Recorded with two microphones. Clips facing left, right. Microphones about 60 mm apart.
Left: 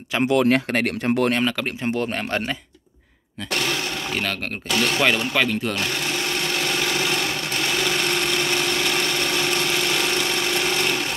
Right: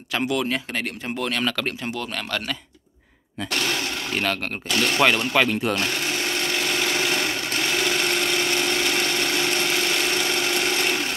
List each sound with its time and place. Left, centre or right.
0.2 s speech: left
0.5 s speech: left
4.1 s speech: centre